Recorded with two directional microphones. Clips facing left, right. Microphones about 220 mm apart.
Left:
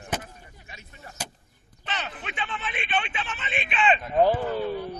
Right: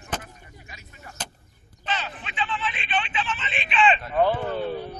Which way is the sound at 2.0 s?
50° left (ahead or behind).